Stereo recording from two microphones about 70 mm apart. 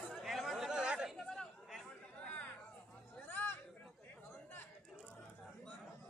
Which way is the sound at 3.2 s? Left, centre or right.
Left.